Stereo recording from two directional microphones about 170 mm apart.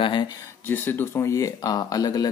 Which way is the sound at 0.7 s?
10° left (ahead or behind).